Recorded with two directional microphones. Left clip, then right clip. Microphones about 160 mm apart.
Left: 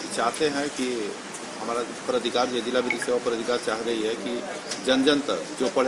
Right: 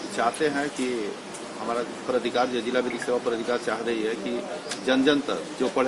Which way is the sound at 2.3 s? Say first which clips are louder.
Even; 5° left (ahead or behind).